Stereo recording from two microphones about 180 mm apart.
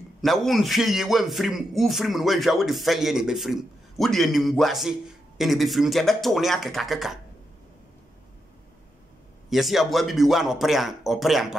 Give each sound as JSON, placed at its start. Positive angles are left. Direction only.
{"t": 0.2, "sound": "speech", "side_deg": 0}
{"t": 9.5, "sound": "speech", "side_deg": 0}